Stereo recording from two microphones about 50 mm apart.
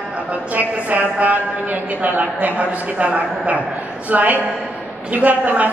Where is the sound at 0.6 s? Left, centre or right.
Right.